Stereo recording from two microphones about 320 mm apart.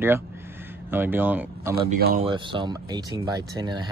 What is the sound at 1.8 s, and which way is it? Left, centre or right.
Speech, right.